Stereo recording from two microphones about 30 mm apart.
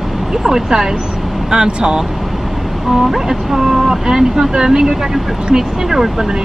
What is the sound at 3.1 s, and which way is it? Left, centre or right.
Speech, centre.